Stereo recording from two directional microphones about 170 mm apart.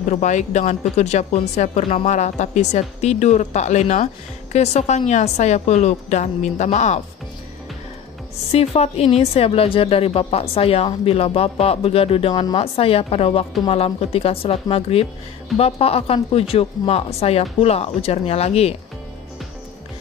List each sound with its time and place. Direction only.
0.1 s speech: 45° left (ahead or behind)
8.5 s speech: 40° left (ahead or behind)